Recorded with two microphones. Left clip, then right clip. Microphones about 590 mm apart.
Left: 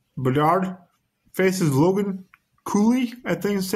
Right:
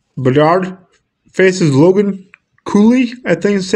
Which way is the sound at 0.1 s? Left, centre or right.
Left.